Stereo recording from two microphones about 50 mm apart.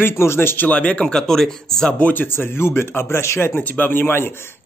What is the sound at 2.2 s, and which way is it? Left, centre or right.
Speech, left.